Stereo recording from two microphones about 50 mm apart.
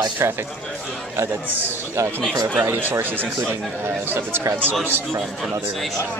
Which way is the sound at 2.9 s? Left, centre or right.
Right.